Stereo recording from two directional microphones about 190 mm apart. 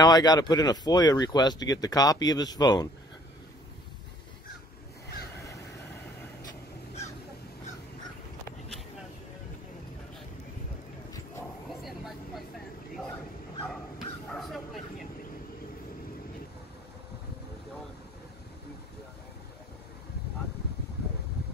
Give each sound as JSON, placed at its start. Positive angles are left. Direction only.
{"t": 0.0, "sound": "speech", "side_deg": 20}
{"t": 11.7, "sound": "vehicle", "side_deg": 0}
{"t": 13.7, "sound": "bow-wow", "side_deg": 0}